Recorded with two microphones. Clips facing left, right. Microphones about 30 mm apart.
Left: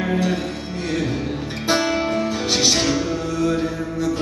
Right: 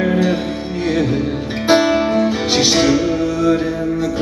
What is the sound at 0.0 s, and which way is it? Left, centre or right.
Music, centre.